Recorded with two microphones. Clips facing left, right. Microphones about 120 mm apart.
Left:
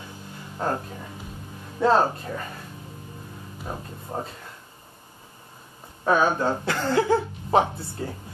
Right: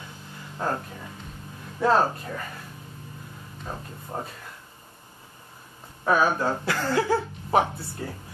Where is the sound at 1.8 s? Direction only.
25° left (ahead or behind).